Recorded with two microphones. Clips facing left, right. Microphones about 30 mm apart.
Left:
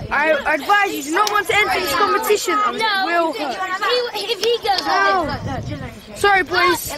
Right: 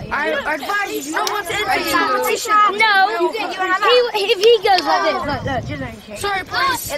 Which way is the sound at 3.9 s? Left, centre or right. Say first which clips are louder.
Right 7 dB; right.